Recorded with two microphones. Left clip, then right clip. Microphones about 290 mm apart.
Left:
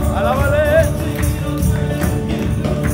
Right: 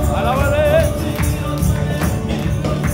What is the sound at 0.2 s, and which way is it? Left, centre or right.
Music, centre.